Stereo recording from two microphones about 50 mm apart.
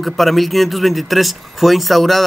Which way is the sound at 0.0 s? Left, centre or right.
Centre.